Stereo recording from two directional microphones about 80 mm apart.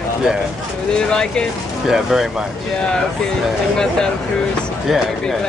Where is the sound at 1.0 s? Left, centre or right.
Centre.